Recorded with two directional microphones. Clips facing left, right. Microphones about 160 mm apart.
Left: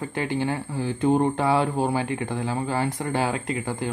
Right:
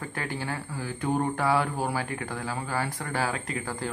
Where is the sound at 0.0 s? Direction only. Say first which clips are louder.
Left 8 dB; 20° left (ahead or behind).